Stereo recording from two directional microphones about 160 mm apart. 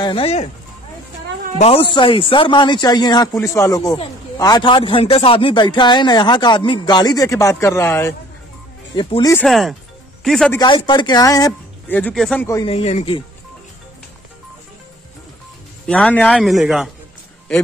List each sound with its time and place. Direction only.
0.0 s speech: 35° left (ahead or behind)
1.6 s speech: 35° left (ahead or behind); by 8.1 s 15° left (ahead or behind)
9.4 s a man's voice: centre (ahead or behind)
10.9 s speech: 25° left (ahead or behind)
11.9 s speech: 5° left (ahead or behind)
12.6 s speech: 40° left (ahead or behind)
15.9 s a man's voice: 5° left (ahead or behind)